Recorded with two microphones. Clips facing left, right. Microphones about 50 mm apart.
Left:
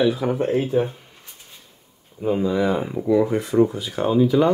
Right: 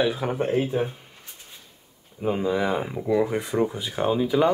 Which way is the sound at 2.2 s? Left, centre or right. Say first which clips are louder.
Left 3 dB; centre.